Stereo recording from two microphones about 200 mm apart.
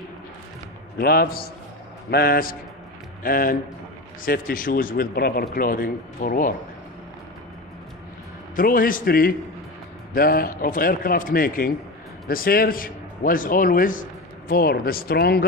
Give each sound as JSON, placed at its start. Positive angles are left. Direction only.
{"t": 0.9, "sound": "speech", "side_deg": 50}
{"t": 8.5, "sound": "speech", "side_deg": 45}